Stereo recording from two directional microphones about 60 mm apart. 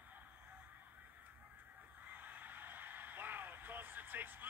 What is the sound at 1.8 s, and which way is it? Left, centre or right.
Vehicle, right.